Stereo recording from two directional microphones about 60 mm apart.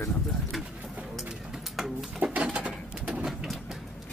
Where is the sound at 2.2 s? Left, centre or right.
Right.